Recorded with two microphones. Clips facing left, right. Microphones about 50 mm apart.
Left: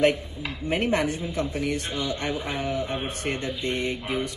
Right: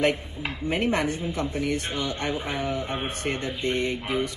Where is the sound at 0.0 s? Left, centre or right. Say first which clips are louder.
Left 2 dB; right.